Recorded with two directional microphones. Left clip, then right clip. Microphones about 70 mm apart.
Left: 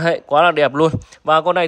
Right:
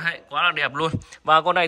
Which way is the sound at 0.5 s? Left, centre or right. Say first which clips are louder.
Left 9 dB; left.